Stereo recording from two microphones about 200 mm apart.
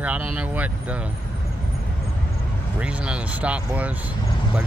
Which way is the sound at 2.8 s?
5° right (ahead or behind).